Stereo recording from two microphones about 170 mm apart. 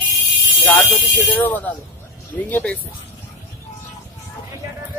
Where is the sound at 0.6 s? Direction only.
15° left (ahead or behind).